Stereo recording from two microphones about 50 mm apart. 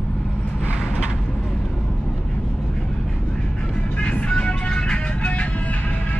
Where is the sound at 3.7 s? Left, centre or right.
Left.